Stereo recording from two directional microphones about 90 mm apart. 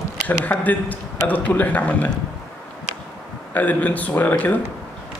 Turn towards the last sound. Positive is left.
turn(degrees=20)  # may be behind; listen again after turning